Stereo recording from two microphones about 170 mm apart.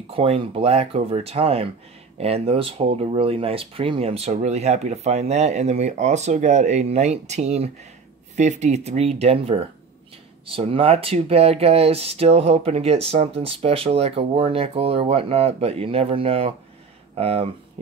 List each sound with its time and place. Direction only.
0.1 s speech: 35° right (ahead or behind)